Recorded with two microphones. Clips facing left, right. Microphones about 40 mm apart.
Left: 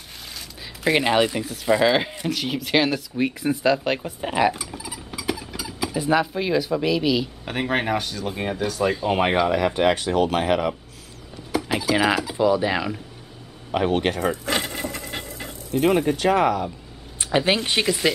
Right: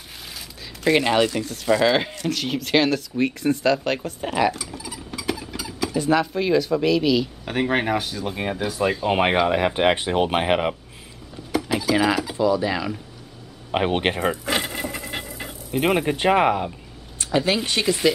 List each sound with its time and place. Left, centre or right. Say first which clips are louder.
0.8 s speech: right 1 dB; centre; by 10.8 s right
11.7 s speech: even; centre
12.4 s speech: left 2 dB; centre
13.7 s speech: even; right
14.2 s a sound: even; centre
15.8 s speech: left 1 dB; right
17.2 s speech: left 1 dB; centre
17.8 s speech: right 5 dB; centre